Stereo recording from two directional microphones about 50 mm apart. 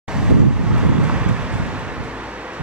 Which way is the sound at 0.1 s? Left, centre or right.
Centre.